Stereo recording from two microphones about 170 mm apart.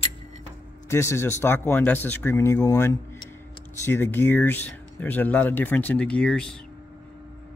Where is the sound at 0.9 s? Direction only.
15° left (ahead or behind).